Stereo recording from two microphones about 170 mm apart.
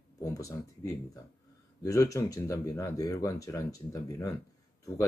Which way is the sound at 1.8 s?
20° left (ahead or behind).